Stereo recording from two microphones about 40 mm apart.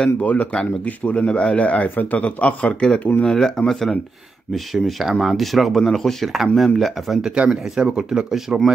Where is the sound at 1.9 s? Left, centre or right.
Left.